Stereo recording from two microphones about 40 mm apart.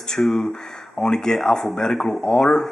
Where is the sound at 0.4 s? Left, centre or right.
Centre.